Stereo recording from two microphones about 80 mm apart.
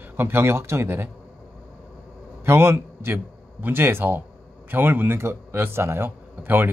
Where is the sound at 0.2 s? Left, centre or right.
Right.